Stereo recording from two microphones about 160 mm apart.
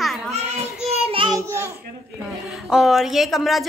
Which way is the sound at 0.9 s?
35° right (ahead or behind).